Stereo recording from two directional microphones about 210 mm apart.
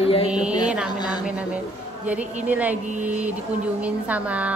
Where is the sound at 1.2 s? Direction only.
5° right (ahead or behind).